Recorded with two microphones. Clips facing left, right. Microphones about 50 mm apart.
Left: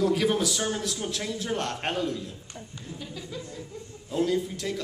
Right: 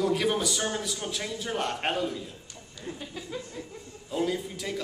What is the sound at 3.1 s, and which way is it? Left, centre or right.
Chuckle, right.